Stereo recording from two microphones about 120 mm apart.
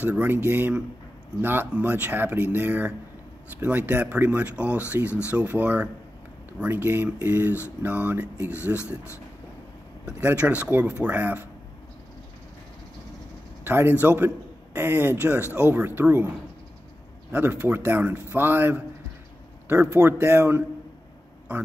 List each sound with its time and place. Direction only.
0.0 s speech: 15° right (ahead or behind)
10.2 s speech: 10° right (ahead or behind)
13.7 s a man's voice: 15° right (ahead or behind)
17.3 s speech: 15° right (ahead or behind)